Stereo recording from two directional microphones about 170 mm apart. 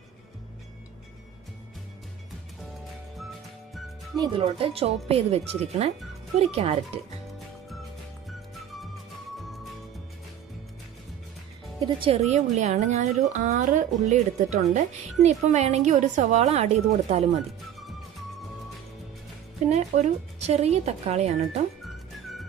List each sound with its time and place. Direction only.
4.2 s a woman's voice: 35° right (ahead or behind)
11.8 s a woman's voice: 35° right (ahead or behind)
19.7 s a woman's voice: 40° right (ahead or behind)